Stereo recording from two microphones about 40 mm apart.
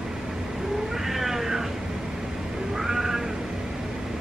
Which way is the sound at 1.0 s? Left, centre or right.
Centre.